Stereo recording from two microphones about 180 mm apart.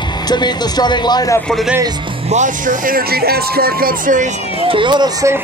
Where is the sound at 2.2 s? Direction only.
40° right (ahead or behind).